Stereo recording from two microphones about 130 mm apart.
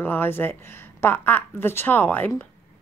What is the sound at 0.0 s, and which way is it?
Speech, 15° left (ahead or behind).